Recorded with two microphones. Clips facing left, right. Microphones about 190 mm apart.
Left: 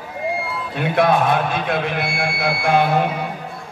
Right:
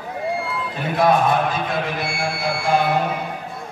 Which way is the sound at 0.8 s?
60° left (ahead or behind).